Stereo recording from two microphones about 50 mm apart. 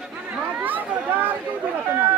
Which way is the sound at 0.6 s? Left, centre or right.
Right.